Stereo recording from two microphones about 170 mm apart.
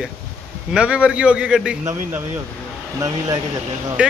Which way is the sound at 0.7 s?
5° right (ahead or behind).